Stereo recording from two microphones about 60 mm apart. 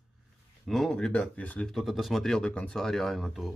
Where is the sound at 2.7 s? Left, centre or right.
Centre.